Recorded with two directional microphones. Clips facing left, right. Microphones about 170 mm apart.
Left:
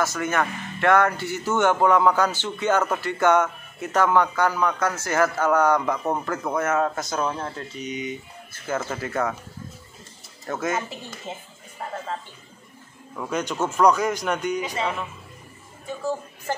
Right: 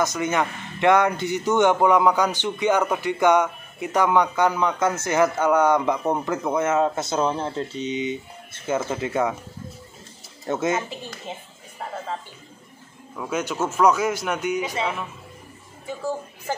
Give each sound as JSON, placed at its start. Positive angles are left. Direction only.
{"t": 0.0, "sound": "speech", "side_deg": -20}
{"t": 10.4, "sound": "speech", "side_deg": -25}
{"t": 11.3, "sound": "a man's voice", "side_deg": 0}
{"t": 13.2, "sound": "a man's voice", "side_deg": -5}